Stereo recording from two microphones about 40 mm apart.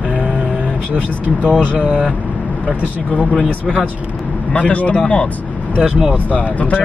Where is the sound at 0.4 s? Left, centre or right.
Right.